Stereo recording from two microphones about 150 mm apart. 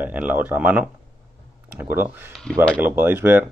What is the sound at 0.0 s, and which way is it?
Speech, 10° right (ahead or behind).